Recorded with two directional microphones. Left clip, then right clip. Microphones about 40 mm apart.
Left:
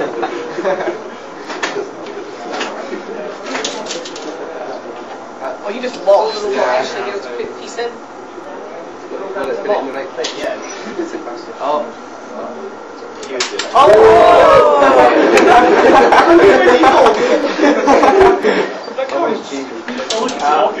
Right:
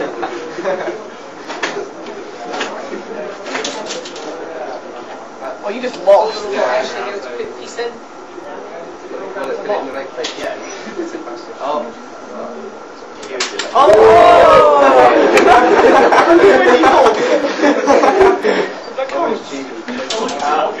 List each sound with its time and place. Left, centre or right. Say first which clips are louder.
0.0 s a sound: left 2 dB; left
2.5 s a sound: even; left
3.4 s bird: left 1 dB; centre
5.7 s a man's voice: right 1 dB; centre; by 7.9 s left
9.4 s speech: left 2 dB; left
11.6 s speech: left 3 dB; left
13.3 s speech: left 1 dB; centre
13.8 s speech: even; centre
17.2 s speech: left 1 dB; left